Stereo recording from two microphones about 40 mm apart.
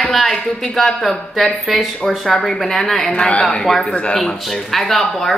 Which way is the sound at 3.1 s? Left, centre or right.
Left.